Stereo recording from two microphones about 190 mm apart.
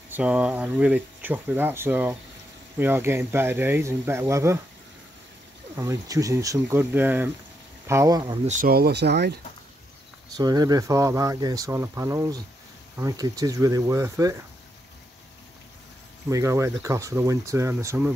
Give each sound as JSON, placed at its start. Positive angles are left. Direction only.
{"t": 0.1, "sound": "speech", "side_deg": -5}
{"t": 5.8, "sound": "speech", "side_deg": -15}
{"t": 8.5, "sound": "speech", "side_deg": -45}
{"t": 10.3, "sound": "speech", "side_deg": -20}
{"t": 16.3, "sound": "speech", "side_deg": -15}